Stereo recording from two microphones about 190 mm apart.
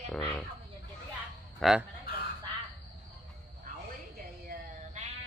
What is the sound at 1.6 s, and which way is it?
Speech, centre (ahead or behind).